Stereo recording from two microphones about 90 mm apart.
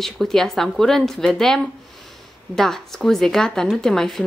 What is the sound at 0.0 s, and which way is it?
A woman's voice, 5° left (ahead or behind).